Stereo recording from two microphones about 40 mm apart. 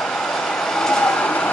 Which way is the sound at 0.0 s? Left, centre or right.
Centre.